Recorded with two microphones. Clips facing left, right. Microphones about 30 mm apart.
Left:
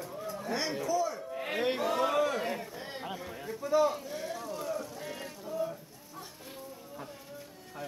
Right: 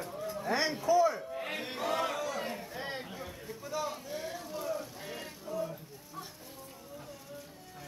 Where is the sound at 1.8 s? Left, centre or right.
Centre.